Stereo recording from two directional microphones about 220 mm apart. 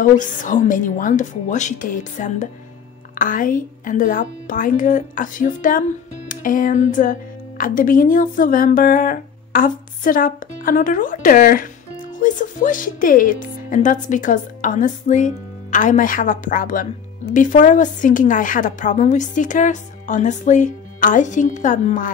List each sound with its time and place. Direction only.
0.0 s speech: 35° left (ahead or behind)